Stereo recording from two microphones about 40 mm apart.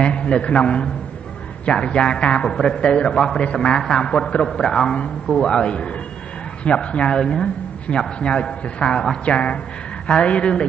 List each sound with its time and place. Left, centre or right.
0.0 s a man's voice: left